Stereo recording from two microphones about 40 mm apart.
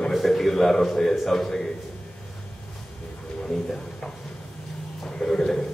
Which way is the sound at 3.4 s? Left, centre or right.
Centre.